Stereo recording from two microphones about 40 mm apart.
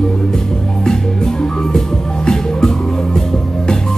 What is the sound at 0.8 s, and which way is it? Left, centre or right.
Music, centre.